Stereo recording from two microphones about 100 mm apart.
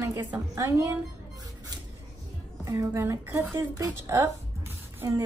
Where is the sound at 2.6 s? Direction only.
35° right (ahead or behind).